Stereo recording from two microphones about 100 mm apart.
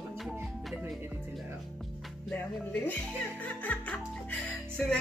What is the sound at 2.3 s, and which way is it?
Speech, 15° left (ahead or behind).